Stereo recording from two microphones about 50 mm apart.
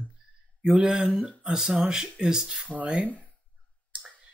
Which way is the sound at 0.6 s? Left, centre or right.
Centre.